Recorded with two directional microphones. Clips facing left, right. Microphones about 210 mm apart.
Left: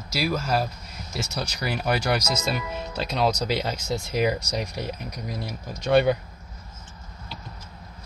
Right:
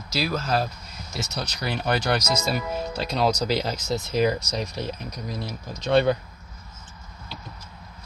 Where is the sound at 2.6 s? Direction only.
40° right (ahead or behind).